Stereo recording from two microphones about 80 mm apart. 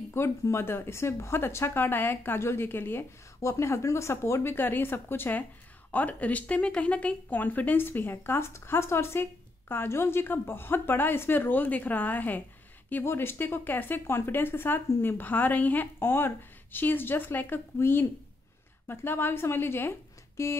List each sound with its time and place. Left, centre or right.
0.1 s speech: left
3.3 s speech: left